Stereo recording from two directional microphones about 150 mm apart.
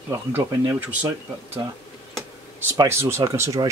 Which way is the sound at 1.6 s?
25° right (ahead or behind).